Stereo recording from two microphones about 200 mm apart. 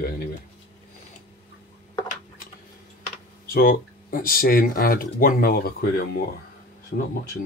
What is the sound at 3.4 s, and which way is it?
Speech, 45° left (ahead or behind).